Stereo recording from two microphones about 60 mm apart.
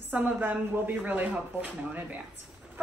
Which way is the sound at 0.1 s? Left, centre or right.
Right.